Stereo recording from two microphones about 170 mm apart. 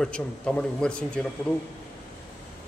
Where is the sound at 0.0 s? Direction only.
5° left (ahead or behind).